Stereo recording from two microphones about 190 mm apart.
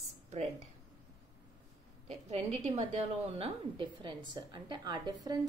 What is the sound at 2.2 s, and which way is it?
A woman's voice, 35° right (ahead or behind).